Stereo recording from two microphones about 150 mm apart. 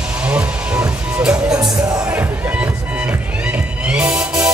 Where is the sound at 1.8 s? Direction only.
25° right (ahead or behind).